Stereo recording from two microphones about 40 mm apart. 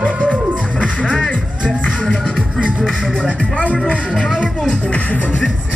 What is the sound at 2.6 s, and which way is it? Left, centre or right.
Music, right.